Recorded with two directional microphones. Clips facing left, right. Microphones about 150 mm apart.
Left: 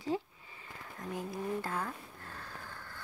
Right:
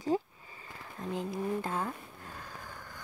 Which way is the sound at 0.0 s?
40° right (ahead or behind).